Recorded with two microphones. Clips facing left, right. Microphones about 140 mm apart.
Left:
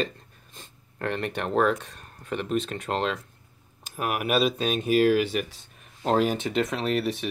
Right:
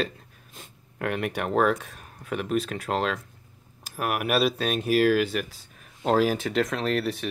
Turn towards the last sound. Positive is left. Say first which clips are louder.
# even
turn(degrees=0)  # may be behind; listen again after turning